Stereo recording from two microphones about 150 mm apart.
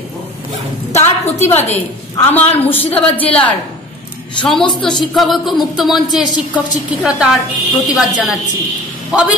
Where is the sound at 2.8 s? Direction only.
40° left (ahead or behind).